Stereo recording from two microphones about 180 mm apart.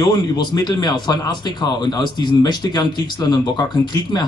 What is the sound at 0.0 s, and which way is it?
Speech, 25° left (ahead or behind).